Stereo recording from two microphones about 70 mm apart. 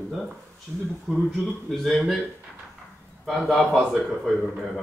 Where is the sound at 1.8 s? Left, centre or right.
Centre.